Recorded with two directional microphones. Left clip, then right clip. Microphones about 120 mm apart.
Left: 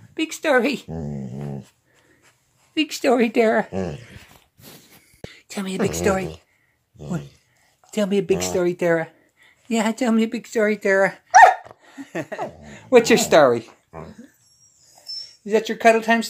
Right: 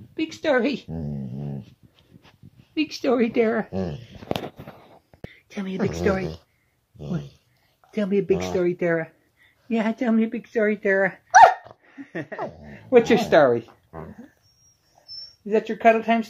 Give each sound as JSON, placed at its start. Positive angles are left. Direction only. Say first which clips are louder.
{"t": 0.1, "sound": "speech", "louder": "left 3 dB", "side_deg": 5}
{"t": 0.8, "sound": "dog", "louder": "left 2 dB", "side_deg": 40}
{"t": 2.7, "sound": "a woman's voice", "louder": "left 4 dB", "side_deg": 15}
{"t": 5.2, "sound": "a woman's voice", "louder": "left 4 dB", "side_deg": 35}
{"t": 7.0, "sound": "speech", "louder": "left 2 dB", "side_deg": 0}
{"t": 7.9, "sound": "speech", "louder": "left 2 dB", "side_deg": 20}
{"t": 11.6, "sound": "a sound", "louder": "left 3 dB", "side_deg": 30}
{"t": 12.6, "sound": "speech", "louder": "left 2 dB", "side_deg": 25}
{"t": 15.6, "sound": "speech", "louder": "left 2 dB", "side_deg": 40}
{"t": 16.0, "sound": "speech", "louder": "left 3 dB", "side_deg": 25}